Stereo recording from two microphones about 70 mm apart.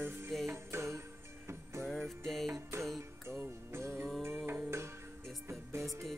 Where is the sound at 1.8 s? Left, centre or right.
Centre.